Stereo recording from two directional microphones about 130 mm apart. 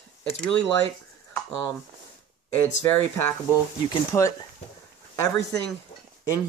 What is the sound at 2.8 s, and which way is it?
Speech, 20° left (ahead or behind).